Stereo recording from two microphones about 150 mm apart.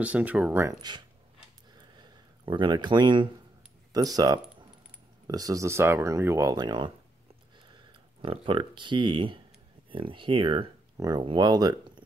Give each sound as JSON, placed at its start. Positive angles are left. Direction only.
{"t": 0.0, "sound": "speech", "side_deg": -10}
{"t": 1.8, "sound": "a sound", "side_deg": -30}
{"t": 3.9, "sound": "speech", "side_deg": -25}
{"t": 8.2, "sound": "speech", "side_deg": -35}